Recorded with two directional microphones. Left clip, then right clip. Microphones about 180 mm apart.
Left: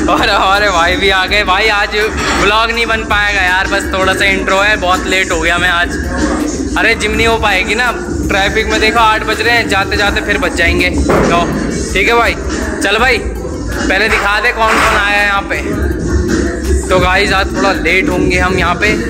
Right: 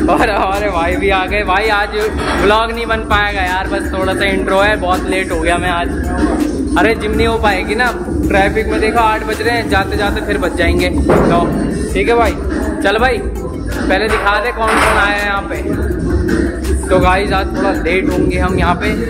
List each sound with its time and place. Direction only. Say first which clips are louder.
0.0 s speech: left 2 dB; centre (ahead or behind)
4.2 s speech: right 1 dB; 15° right (ahead or behind)
12.0 s speech: left 2 dB; centre (ahead or behind)
16.9 s speech: left 2 dB; centre (ahead or behind)